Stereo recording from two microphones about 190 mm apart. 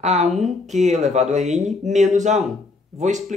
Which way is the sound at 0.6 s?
40° right (ahead or behind).